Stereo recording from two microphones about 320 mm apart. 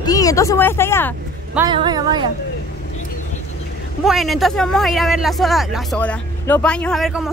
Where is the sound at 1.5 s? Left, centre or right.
Centre.